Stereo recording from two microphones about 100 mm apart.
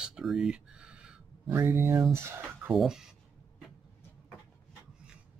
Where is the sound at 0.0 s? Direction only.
5° right (ahead or behind).